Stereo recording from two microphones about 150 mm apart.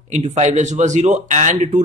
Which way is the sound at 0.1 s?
50° right (ahead or behind).